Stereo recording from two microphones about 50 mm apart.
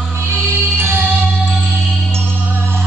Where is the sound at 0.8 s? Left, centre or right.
Right.